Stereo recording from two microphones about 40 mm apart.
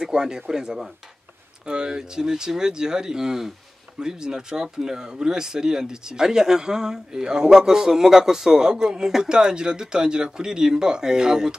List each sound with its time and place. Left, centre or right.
0.0 s speech: centre